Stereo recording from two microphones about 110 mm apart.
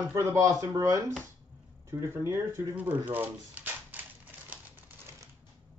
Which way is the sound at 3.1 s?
15° right (ahead or behind).